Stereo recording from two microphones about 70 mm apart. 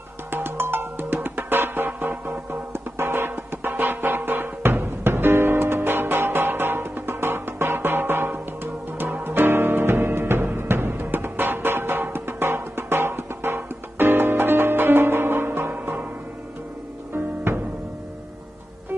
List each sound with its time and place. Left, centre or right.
0.3 s music: right